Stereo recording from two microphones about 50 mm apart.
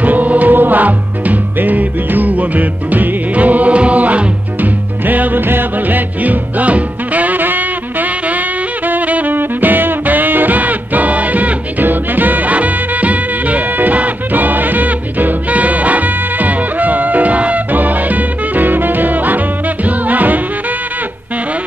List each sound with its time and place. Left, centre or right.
0.0 s music: right